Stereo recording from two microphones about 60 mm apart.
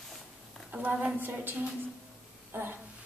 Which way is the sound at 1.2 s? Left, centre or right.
Right.